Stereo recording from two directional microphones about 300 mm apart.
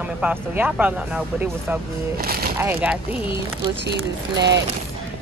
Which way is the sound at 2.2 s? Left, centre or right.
Right.